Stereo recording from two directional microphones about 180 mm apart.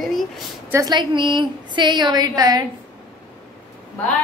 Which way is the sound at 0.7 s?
20° right (ahead or behind).